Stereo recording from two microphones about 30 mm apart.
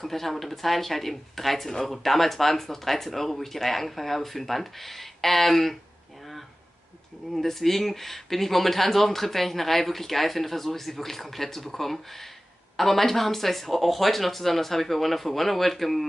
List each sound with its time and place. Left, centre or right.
0.0 s speech: centre
7.3 s speech: centre